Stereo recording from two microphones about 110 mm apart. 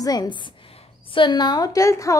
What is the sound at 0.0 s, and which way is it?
A woman's voice, 35° left (ahead or behind).